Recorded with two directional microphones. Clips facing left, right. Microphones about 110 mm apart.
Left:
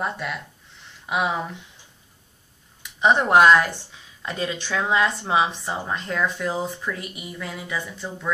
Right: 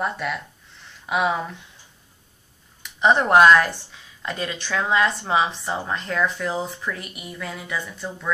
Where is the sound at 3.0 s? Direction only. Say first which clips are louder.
Right 1 dB; 15° left (ahead or behind).